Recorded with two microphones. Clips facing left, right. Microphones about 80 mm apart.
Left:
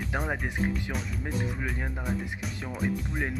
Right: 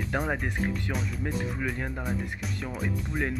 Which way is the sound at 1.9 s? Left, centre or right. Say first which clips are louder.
Even; centre.